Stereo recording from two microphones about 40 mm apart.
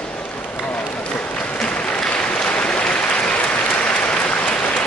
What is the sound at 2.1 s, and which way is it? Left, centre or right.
Applause, left.